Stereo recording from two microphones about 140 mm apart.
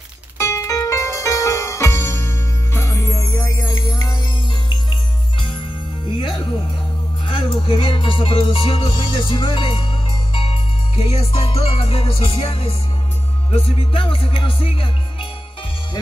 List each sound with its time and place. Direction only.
0.4 s music: 20° left (ahead or behind)
6.0 s music: 40° left (ahead or behind)